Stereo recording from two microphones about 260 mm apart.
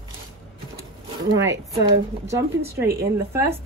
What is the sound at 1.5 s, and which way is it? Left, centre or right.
Speech, centre.